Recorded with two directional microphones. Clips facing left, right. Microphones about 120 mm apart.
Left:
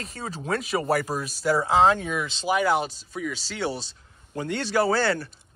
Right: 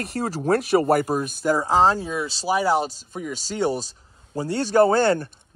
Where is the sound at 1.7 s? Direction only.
35° right (ahead or behind).